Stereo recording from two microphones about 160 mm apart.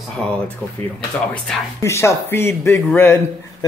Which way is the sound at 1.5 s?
5° left (ahead or behind).